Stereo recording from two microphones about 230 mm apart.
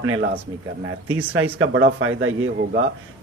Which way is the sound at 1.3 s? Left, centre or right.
Right.